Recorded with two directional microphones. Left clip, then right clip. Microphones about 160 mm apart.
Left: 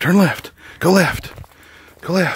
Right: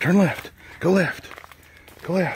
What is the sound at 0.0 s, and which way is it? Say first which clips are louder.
Speech: left 4 dB; 35° left (ahead or behind).